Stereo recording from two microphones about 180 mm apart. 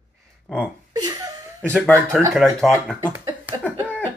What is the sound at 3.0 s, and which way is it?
Speech, 15° right (ahead or behind).